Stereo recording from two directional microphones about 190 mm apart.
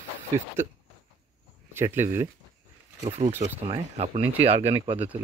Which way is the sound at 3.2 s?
45° right (ahead or behind).